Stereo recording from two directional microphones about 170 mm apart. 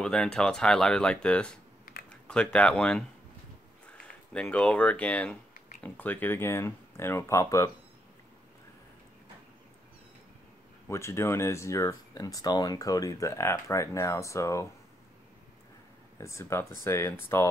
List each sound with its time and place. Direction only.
0.0 s speech: 5° left (ahead or behind)
1.9 s typing: 55° left (ahead or behind)
2.2 s speech: 5° left (ahead or behind)
4.3 s speech: 5° left (ahead or behind)
10.9 s speech: 15° left (ahead or behind)
16.2 s speech: 15° left (ahead or behind)